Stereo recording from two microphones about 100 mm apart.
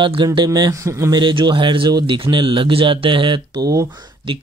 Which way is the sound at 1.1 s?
55° right (ahead or behind).